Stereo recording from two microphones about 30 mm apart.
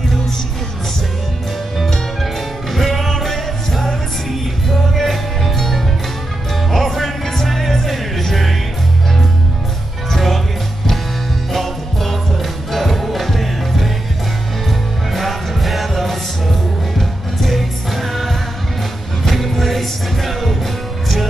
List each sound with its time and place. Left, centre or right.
2.7 s music: centre
10.1 s music: centre
11.5 s music: centre